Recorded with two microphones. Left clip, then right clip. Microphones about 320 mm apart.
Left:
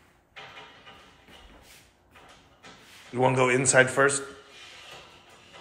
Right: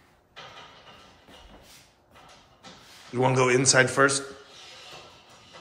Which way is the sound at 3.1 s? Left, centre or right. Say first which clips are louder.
Right 1 dB; centre.